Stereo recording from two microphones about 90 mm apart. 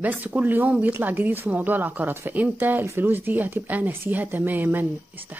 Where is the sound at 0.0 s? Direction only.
20° right (ahead or behind).